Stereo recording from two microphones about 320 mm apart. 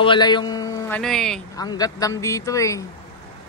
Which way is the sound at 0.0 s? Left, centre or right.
Centre.